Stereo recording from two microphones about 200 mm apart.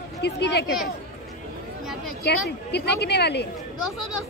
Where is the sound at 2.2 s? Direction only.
55° left (ahead or behind).